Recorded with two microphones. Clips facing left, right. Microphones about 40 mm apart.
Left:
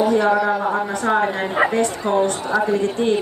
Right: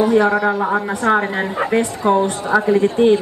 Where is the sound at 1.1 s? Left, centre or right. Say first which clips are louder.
Right 3 dB; right.